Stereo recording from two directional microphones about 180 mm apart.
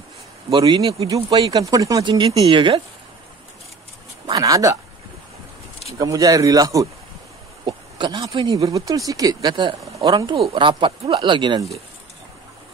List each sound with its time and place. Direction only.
0.5 s speech: 25° right (ahead or behind)
4.3 s speech: 20° right (ahead or behind)
5.9 s speech: 20° right (ahead or behind)